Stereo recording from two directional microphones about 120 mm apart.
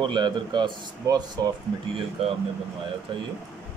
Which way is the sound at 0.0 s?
40° right (ahead or behind).